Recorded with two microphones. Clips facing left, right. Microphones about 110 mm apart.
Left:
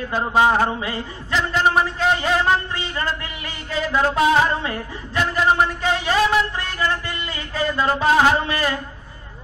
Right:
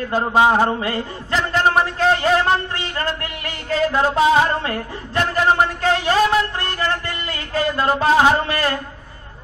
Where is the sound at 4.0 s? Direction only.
15° right (ahead or behind).